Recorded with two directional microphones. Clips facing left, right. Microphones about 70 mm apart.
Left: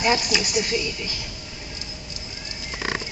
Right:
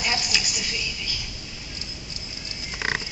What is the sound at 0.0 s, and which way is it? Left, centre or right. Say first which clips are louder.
A man's voice: left 6 dB; left.